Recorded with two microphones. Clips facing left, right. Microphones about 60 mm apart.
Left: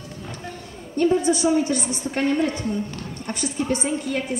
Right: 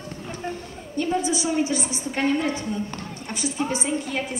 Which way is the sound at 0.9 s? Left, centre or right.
Left.